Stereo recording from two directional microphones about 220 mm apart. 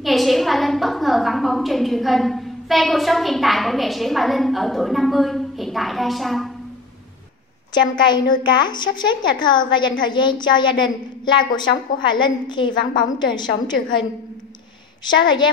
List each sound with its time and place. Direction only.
0.0 s a woman's voice: centre (ahead or behind)
8.0 s a woman's voice: 20° left (ahead or behind)
15.0 s a woman's voice: 20° left (ahead or behind)